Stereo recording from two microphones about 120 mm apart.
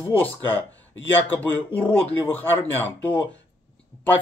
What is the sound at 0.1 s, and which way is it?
Speech, 15° left (ahead or behind).